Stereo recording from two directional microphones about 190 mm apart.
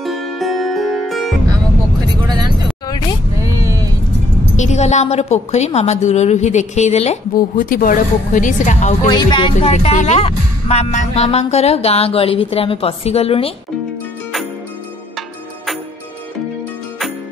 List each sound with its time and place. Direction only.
0.0 s music: centre (ahead or behind)
2.2 s vehicle: 20° right (ahead or behind)
4.6 s speech: 35° left (ahead or behind)
7.3 s a woman's voice: 45° left (ahead or behind)
9.0 s speech: 25° left (ahead or behind)
15.1 s music: centre (ahead or behind)